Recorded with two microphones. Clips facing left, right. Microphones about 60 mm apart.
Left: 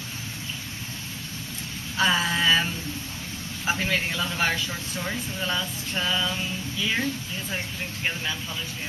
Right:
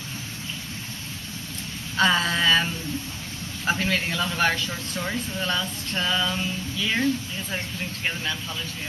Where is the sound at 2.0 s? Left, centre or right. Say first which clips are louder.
Right 2 dB; centre.